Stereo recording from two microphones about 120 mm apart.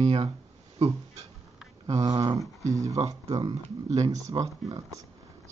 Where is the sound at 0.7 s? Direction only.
55° right (ahead or behind).